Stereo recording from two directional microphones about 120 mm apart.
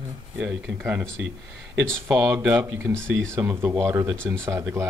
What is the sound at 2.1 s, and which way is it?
Speech, 15° right (ahead or behind).